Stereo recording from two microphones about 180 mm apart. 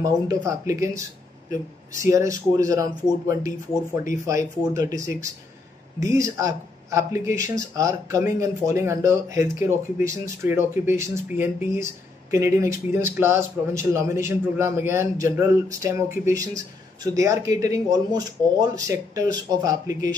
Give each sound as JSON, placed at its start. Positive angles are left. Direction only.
{"t": 0.0, "sound": "speech", "side_deg": -20}
{"t": 4.7, "sound": "speech", "side_deg": -20}